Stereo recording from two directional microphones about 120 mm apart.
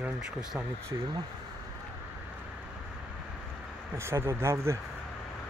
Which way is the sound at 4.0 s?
20° right (ahead or behind).